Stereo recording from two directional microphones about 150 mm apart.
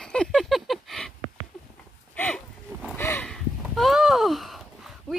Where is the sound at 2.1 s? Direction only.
10° left (ahead or behind).